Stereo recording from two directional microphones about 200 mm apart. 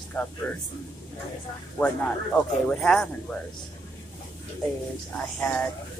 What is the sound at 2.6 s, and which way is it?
Speech, 5° left (ahead or behind).